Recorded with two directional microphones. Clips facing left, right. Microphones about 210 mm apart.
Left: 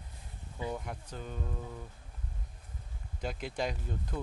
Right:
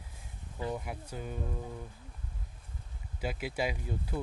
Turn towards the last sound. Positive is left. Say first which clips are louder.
# right 2 dB
turn(degrees=-10)  # may be behind; listen again after turning